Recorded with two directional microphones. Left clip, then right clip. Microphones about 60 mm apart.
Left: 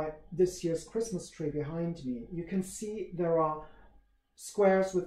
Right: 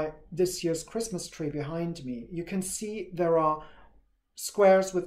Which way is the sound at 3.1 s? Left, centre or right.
Right.